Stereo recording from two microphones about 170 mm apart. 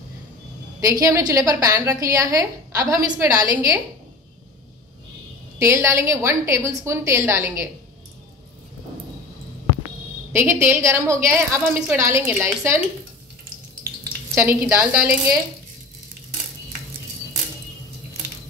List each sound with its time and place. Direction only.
0.7 s a woman's voice: 20° right (ahead or behind)
5.6 s a woman's voice: 15° right (ahead or behind)
10.3 s a woman's voice: 15° right (ahead or behind)
14.3 s a woman's voice: 15° right (ahead or behind)